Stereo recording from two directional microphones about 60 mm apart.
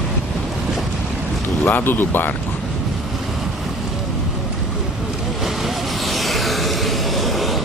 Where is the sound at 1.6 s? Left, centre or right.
Left.